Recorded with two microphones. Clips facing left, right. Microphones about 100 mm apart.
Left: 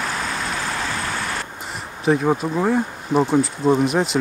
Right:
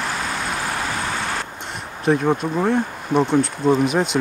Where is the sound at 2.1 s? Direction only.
Centre (ahead or behind).